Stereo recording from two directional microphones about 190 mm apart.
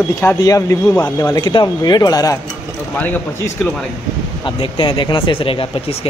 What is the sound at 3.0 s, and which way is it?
Speech, 10° left (ahead or behind).